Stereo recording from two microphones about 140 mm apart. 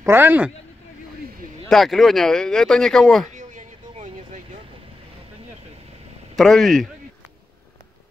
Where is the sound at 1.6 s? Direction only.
Centre (ahead or behind).